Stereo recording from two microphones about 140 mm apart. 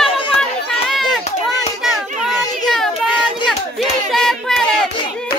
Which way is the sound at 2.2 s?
Centre (ahead or behind).